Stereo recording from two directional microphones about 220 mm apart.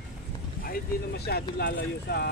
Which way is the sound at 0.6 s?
45° left (ahead or behind).